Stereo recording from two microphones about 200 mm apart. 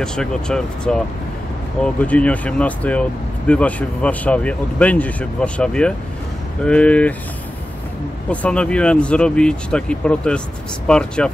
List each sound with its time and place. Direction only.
0.0 s speech: 5° left (ahead or behind)
8.3 s speech: 5° left (ahead or behind)